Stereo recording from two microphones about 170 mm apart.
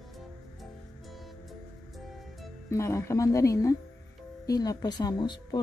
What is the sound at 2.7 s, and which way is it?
Speech, 15° left (ahead or behind).